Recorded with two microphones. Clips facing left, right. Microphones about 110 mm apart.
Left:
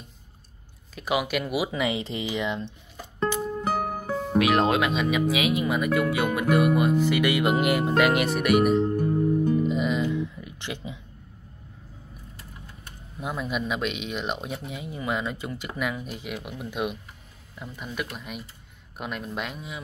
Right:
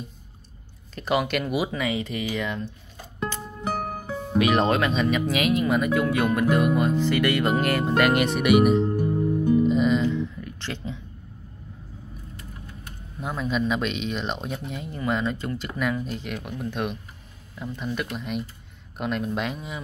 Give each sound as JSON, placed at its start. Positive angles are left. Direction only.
{"t": 0.9, "sound": "speech", "side_deg": 5}
{"t": 1.8, "sound": "speech", "side_deg": 25}
{"t": 3.3, "sound": "music", "side_deg": 10}
{"t": 3.6, "sound": "music", "side_deg": 0}
{"t": 4.4, "sound": "speech", "side_deg": 0}
{"t": 8.9, "sound": "music", "side_deg": -15}
{"t": 9.6, "sound": "music", "side_deg": 5}
{"t": 13.2, "sound": "speech", "side_deg": 5}